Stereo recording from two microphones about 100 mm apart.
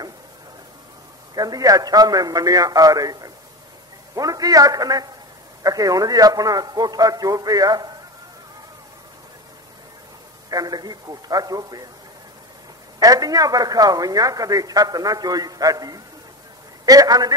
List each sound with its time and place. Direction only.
1.3 s speech: 40° right (ahead or behind)
10.5 s speech: 40° right (ahead or behind)
13.0 s speech: 40° right (ahead or behind)